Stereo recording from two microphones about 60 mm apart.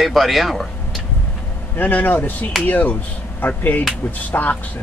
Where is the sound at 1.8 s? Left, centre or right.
Left.